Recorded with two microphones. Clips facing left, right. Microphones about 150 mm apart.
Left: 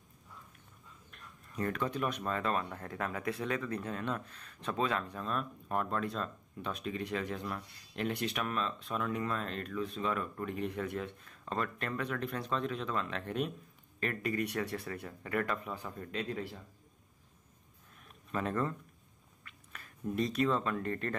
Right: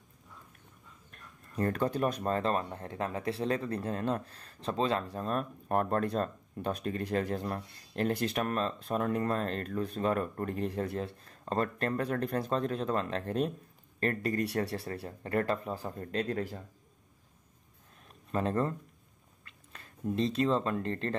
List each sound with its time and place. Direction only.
1.1 s speech: 40° right (ahead or behind)
5.1 s speech: 45° right (ahead or behind)
18.0 s a sound: 30° right (ahead or behind)
19.7 s speech: 25° right (ahead or behind)